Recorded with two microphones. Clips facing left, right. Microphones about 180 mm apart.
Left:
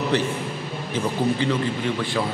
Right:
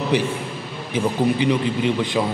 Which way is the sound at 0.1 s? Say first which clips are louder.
Right 2 dB; 10° right (ahead or behind).